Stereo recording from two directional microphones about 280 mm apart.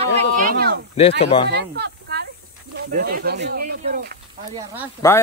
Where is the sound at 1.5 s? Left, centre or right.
Right.